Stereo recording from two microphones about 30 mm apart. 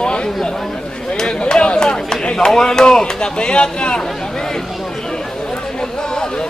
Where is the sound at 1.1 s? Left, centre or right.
Left.